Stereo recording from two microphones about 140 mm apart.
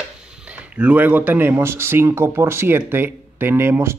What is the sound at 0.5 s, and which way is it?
Speech, 10° right (ahead or behind).